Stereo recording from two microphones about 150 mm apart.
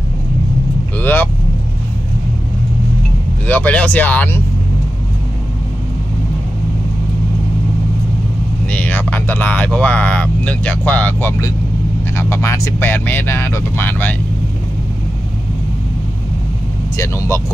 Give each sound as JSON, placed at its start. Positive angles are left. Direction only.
{"t": 0.9, "sound": "speech", "side_deg": 15}
{"t": 3.4, "sound": "speech", "side_deg": 10}
{"t": 8.6, "sound": "speech", "side_deg": 10}
{"t": 16.9, "sound": "speech", "side_deg": 20}